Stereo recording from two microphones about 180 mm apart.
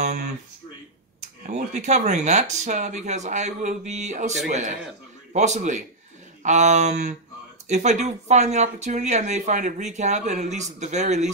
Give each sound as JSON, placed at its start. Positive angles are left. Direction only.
{"t": 1.4, "sound": "speech", "side_deg": -40}